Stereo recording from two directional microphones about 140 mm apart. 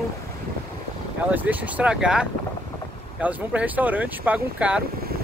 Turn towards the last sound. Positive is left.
turn(degrees=-10)  # may be behind; listen again after turning